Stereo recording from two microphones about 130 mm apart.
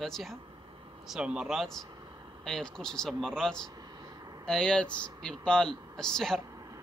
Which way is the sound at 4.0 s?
30° right (ahead or behind).